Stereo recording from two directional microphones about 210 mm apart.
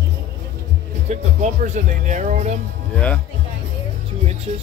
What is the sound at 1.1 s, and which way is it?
Speech, 35° right (ahead or behind).